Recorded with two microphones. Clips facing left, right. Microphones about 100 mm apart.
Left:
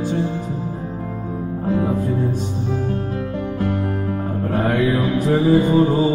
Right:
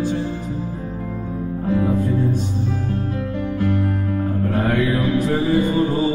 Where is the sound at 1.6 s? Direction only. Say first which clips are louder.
Even; 25° left (ahead or behind).